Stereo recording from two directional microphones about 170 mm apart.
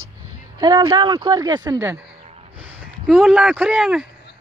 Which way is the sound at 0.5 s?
20° right (ahead or behind).